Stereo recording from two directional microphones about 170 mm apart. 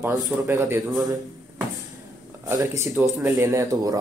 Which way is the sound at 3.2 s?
15° right (ahead or behind).